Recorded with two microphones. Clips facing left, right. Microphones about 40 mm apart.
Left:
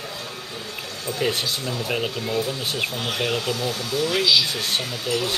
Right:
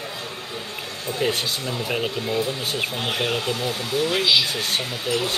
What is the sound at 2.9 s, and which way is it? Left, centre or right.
Speech, right.